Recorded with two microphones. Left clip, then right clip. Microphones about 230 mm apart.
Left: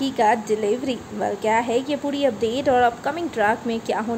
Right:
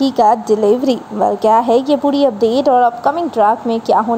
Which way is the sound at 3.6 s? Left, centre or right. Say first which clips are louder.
Right 9 dB; right.